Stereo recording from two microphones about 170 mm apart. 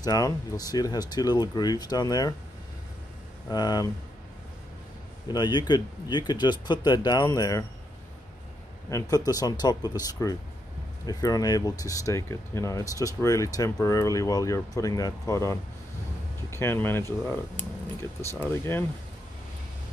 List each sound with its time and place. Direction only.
0.0 s speech: 20° left (ahead or behind)
3.4 s speech: 25° left (ahead or behind)
5.3 s speech: 25° left (ahead or behind)
9.1 s speech: 20° left (ahead or behind)
18.5 s speech: 15° left (ahead or behind)